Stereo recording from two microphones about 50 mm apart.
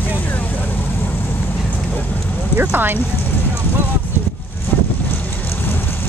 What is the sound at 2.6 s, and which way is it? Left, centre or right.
Speech, right.